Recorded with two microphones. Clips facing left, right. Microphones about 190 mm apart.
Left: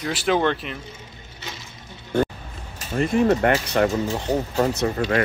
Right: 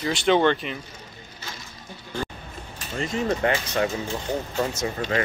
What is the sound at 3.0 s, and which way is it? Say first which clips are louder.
Speech: left 6 dB; 60° left (ahead or behind).